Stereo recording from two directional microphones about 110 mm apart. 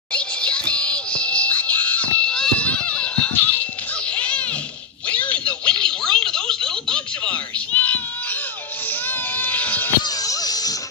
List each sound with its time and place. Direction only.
0.1 s music: 10° left (ahead or behind)
5.0 s telephone: 10° left (ahead or behind)
9.0 s a sound: 15° left (ahead or behind)
10.0 s music: 35° left (ahead or behind)